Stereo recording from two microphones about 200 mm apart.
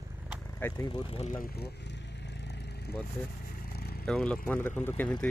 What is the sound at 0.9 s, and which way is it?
Speech, 25° left (ahead or behind).